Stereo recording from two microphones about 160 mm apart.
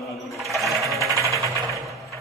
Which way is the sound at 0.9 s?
20° right (ahead or behind).